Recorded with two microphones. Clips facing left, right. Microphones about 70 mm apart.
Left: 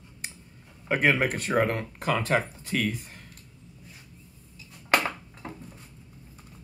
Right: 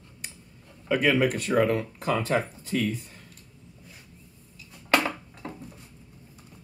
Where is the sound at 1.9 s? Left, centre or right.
Left.